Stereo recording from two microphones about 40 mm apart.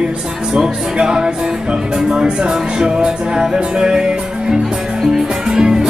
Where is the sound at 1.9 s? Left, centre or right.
Centre.